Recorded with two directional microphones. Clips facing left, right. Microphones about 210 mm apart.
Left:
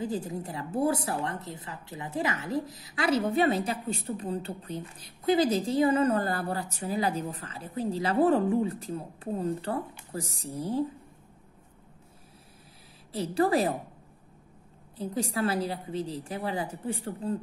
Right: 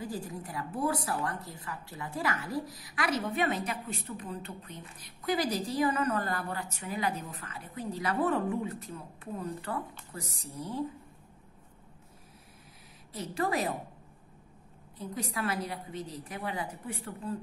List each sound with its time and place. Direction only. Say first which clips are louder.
0.0 s a woman's voice: left 6 dB; 20° left (ahead or behind)
13.1 s a woman's voice: left 7 dB; 30° left (ahead or behind)
15.0 s a woman's voice: left 6 dB; 30° left (ahead or behind)